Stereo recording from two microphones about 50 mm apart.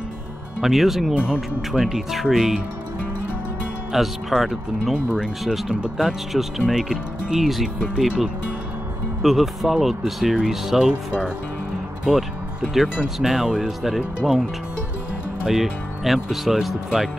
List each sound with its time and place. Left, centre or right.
0.6 s speech: centre
1.1 s speech: centre
1.7 s speech: centre
3.9 s speech: centre
4.9 s speech: centre
5.4 s speech: centre
7.4 s speech: centre
9.2 s speech: centre
12.1 s speech: centre
15.4 s speech: centre